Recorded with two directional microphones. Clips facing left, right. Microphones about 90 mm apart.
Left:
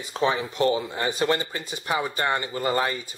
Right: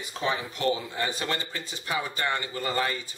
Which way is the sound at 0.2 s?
30° left (ahead or behind).